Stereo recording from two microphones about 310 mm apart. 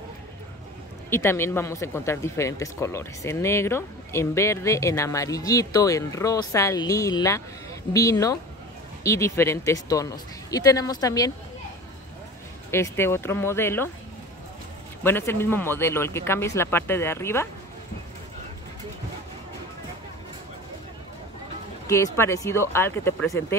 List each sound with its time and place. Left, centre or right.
1.1 s speech: centre
12.7 s speech: centre
15.0 s speech: centre
21.8 s speech: centre